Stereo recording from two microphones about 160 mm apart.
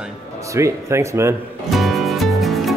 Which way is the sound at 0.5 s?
15° right (ahead or behind).